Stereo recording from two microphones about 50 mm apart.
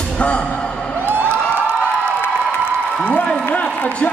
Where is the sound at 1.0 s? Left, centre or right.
Right.